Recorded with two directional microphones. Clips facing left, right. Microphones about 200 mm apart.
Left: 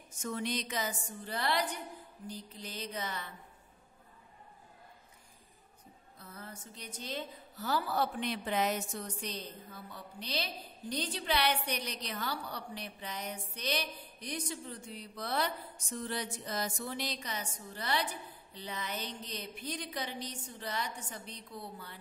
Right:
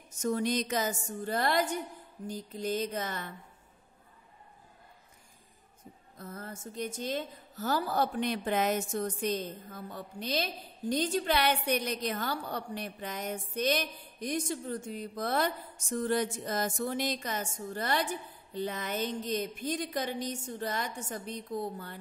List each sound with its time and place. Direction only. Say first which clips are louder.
0.1 s a woman's voice: right 7 dB; 40° right (ahead or behind)
6.1 s a woman's voice: right 6 dB; 45° right (ahead or behind)